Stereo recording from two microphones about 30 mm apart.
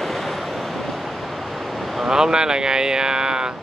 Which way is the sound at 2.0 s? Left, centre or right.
Right.